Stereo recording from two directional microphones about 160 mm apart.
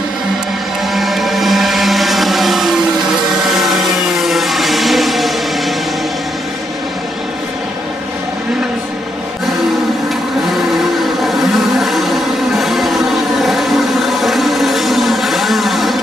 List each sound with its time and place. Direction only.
0.9 s motorboat: centre (ahead or behind)
3.7 s music: centre (ahead or behind)
11.8 s vehicle: centre (ahead or behind)
12.5 s a sound: centre (ahead or behind)